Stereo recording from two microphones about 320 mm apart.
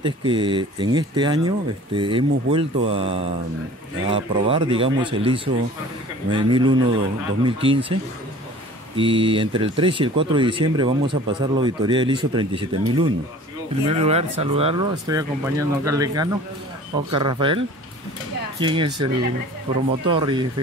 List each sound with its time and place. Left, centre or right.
0.0 s speech: centre
18.6 s speech: centre
20.1 s speech: centre